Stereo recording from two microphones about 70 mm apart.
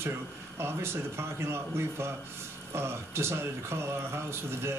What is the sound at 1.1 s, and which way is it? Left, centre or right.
A man's voice, right.